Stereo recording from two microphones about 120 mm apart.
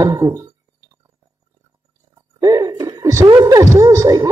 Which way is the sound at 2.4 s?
30° right (ahead or behind).